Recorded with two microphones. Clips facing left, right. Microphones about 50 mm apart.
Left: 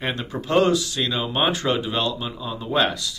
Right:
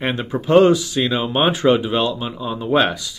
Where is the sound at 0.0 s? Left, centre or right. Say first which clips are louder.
Right 5 dB; centre.